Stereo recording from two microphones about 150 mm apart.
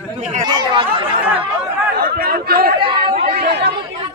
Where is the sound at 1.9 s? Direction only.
90° right.